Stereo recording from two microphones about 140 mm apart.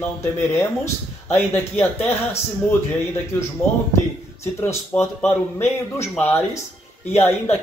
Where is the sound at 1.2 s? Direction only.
15° left (ahead or behind).